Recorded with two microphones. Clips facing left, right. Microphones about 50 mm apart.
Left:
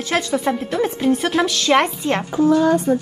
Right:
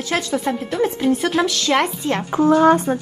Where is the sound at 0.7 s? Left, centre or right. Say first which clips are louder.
Right 1 dB; left.